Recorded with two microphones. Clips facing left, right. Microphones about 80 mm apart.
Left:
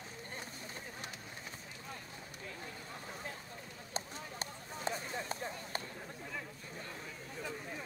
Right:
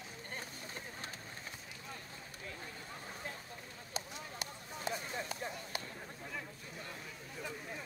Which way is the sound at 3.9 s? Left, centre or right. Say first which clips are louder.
Left 2 dB; left.